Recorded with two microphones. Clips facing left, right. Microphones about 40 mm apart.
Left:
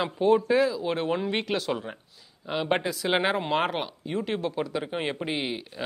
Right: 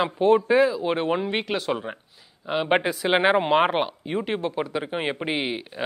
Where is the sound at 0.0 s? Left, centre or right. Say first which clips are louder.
Right 3 dB; centre.